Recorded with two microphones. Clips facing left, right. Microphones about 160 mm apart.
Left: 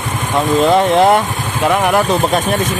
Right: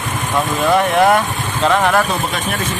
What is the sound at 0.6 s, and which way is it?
Speech, 25° left (ahead or behind).